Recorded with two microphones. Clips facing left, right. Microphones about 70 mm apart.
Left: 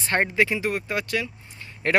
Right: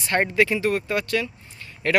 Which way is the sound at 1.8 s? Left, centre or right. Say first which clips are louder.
Right 1 dB; left.